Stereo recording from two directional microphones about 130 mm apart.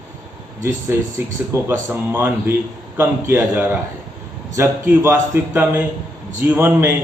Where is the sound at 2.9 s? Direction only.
20° right (ahead or behind).